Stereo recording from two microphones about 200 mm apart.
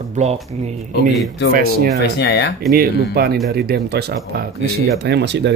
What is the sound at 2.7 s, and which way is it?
Speech, 50° right (ahead or behind).